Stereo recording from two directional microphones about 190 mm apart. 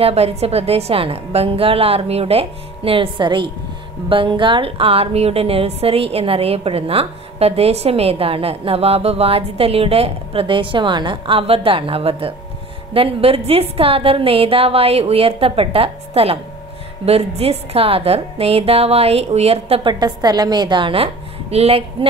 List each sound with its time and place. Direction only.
0.0 s speech: 35° right (ahead or behind)